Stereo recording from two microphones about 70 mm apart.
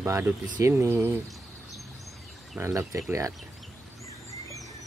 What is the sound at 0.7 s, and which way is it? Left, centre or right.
Speech, right.